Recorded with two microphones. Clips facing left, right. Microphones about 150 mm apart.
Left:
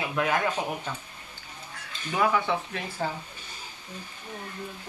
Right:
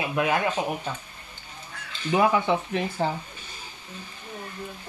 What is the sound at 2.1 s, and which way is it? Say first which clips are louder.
Speech: right 4 dB; 20° right (ahead or behind).